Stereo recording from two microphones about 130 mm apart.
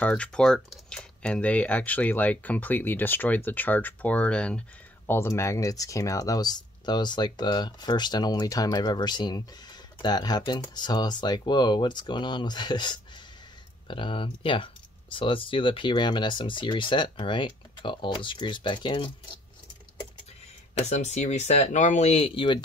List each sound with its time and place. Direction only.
0.0 s speech: 10° left (ahead or behind); by 19.1 s 35° left (ahead or behind)
20.8 s speech: 60° left (ahead or behind); by 22.6 s 40° left (ahead or behind)